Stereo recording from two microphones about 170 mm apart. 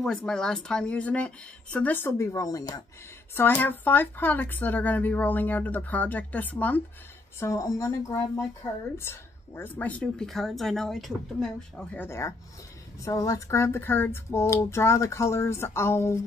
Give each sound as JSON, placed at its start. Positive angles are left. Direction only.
{"t": 0.0, "sound": "speech", "side_deg": 5}
{"t": 3.3, "sound": "speech", "side_deg": 10}